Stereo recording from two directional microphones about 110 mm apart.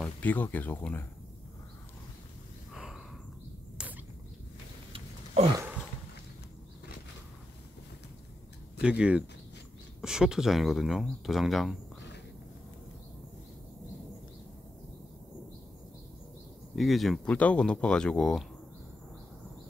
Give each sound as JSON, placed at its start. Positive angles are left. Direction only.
{"t": 0.2, "sound": "speech", "side_deg": 15}
{"t": 2.7, "sound": "snort", "side_deg": -5}
{"t": 3.7, "sound": "a sound", "side_deg": -15}
{"t": 4.9, "sound": "a sound", "side_deg": -60}
{"t": 8.8, "sound": "speech", "side_deg": -10}
{"t": 16.7, "sound": "speech", "side_deg": 0}
{"t": 17.3, "sound": "speech", "side_deg": 10}